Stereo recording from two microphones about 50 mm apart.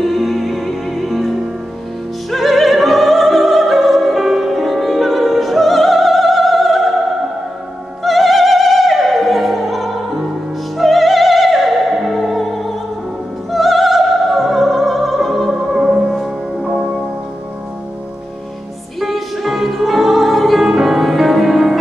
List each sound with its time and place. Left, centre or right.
0.0 s music: centre
2.3 s opera: centre
8.0 s opera: centre
10.8 s music: centre
16.6 s music: right
18.9 s music: centre